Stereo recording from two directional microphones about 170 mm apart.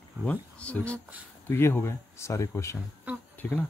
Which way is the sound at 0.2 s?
5° left (ahead or behind).